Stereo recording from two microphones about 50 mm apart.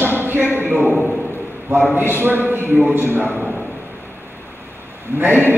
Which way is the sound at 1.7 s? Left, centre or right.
Right.